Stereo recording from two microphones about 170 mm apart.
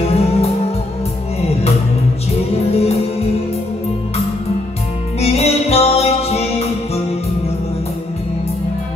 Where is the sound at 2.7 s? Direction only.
35° left (ahead or behind).